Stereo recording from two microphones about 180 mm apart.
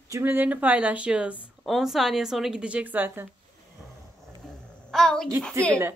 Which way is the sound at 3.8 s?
Centre (ahead or behind).